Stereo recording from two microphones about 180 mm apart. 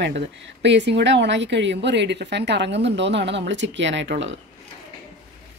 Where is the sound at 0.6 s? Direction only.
75° right (ahead or behind).